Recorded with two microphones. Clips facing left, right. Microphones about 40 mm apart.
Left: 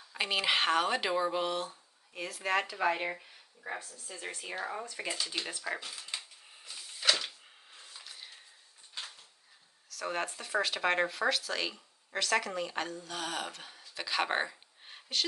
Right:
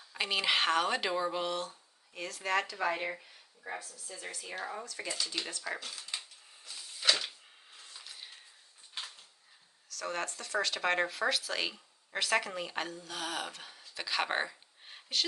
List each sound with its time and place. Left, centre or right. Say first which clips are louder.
0.1 s speech: left 1 dB; centre
3.8 s speech: left 2 dB; left
4.6 s speech: left 1 dB; centre
6.0 s a sound: even; centre
9.8 s speech: left 2 dB; centre